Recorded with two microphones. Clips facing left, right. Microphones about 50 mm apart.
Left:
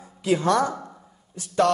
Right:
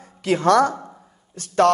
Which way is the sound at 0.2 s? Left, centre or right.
Right.